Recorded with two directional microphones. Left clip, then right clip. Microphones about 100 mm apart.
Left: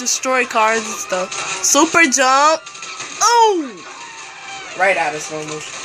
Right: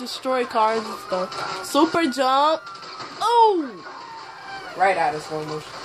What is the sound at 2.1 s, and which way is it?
Speech, 10° left (ahead or behind).